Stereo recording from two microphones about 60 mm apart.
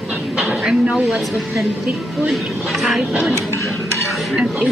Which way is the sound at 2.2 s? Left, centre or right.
Centre.